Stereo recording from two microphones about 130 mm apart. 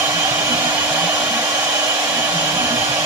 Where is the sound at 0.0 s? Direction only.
20° right (ahead or behind).